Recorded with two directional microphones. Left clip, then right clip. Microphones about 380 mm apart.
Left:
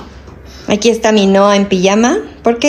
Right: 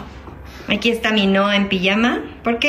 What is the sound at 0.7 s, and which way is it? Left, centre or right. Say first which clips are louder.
A woman's voice: left 7 dB; centre.